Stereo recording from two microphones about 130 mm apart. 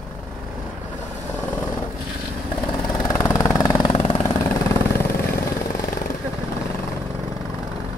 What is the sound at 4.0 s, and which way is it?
Vehicle, 55° left (ahead or behind).